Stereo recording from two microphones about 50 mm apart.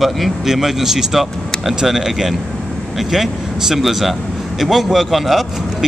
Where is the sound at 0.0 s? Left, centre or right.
Centre.